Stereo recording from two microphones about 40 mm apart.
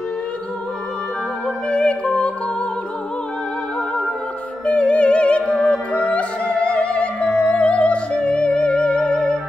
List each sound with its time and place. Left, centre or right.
1.7 s music: left
4.6 s music: left
8.1 s music: left